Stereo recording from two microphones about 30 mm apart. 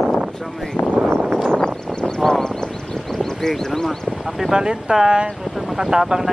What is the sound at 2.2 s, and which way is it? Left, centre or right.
Vehicle, centre.